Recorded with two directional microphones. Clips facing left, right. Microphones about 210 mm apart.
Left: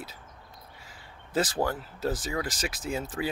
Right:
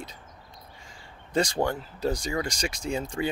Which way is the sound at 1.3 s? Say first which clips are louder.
Right 2 dB; 5° left (ahead or behind).